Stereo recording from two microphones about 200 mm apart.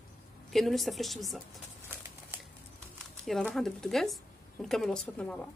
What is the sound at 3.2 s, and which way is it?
Speech, centre (ahead or behind).